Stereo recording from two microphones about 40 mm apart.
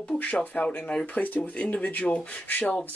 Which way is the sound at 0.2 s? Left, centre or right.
Left.